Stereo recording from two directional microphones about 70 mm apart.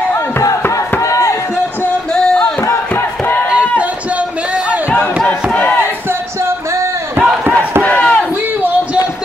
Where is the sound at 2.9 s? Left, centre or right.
Left.